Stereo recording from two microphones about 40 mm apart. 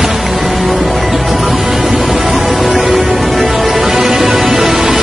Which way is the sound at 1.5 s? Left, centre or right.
Centre.